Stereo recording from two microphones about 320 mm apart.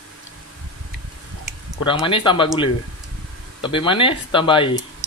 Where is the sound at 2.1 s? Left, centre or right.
Centre.